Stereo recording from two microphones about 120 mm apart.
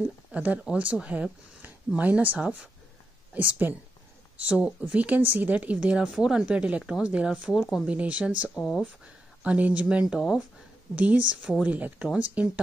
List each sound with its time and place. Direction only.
0.3 s speech: 10° right (ahead or behind)
8.5 s speech: centre (ahead or behind)
9.4 s speech: 10° right (ahead or behind)